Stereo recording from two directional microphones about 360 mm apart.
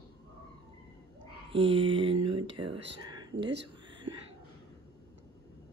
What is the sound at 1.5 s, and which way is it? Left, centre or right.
Speech, centre.